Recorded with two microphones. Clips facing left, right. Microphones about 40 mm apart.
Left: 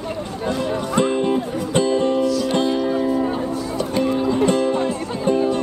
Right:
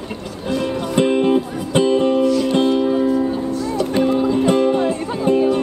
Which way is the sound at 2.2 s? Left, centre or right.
Right.